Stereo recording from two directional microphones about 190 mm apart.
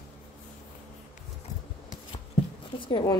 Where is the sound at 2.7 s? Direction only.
25° left (ahead or behind).